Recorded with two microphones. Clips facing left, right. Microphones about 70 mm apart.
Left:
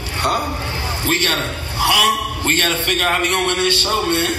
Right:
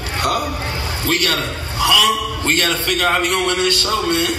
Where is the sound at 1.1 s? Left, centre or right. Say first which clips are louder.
Even; left.